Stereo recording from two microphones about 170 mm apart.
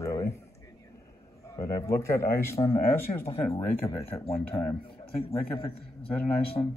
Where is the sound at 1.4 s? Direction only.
15° left (ahead or behind).